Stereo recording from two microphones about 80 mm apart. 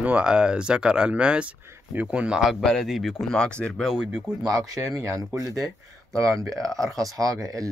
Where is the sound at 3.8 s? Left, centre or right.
Centre.